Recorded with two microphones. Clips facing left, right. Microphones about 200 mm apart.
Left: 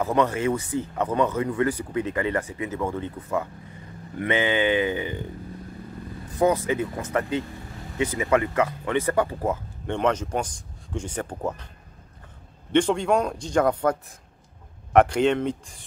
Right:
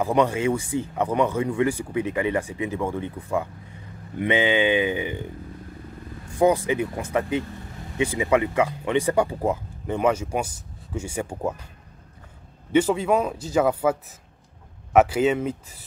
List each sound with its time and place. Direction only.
0.0 s speech: 15° right (ahead or behind)
6.3 s speech: 10° right (ahead or behind)
12.7 s a man's voice: 5° right (ahead or behind)